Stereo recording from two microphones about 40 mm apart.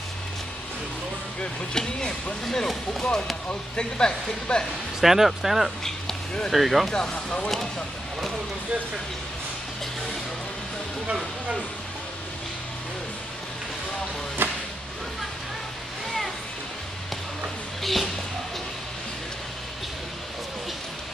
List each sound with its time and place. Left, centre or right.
1.4 s speech: centre
3.4 s speech: left
5.0 s speech: centre
6.9 s speech: centre
14.4 s a sound: right
17.8 s speech: centre